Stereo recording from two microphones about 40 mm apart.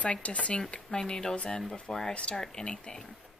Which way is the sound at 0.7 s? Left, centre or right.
Left.